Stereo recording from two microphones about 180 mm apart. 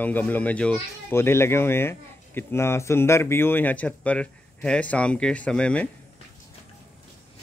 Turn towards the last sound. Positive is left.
turn(degrees=5)  # may be behind; listen again after turning